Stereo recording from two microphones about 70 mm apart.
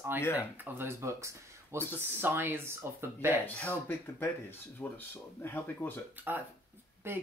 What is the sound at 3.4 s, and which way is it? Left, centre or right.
Speech, left.